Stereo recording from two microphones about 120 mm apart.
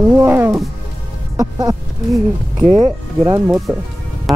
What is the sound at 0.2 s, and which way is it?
Music, 20° right (ahead or behind).